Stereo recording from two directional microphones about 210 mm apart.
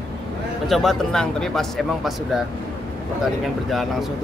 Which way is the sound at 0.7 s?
Centre (ahead or behind).